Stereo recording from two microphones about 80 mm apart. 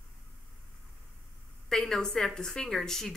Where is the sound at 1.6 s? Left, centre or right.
Centre.